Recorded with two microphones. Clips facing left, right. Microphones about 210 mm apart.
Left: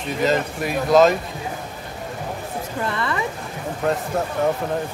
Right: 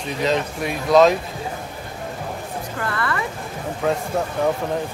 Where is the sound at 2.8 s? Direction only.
20° left (ahead or behind).